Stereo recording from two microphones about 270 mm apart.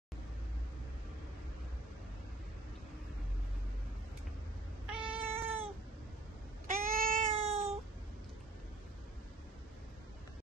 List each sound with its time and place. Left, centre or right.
5.0 s cat: centre
6.7 s cat: right